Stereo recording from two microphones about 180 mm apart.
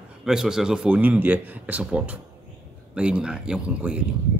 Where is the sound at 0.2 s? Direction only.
5° right (ahead or behind).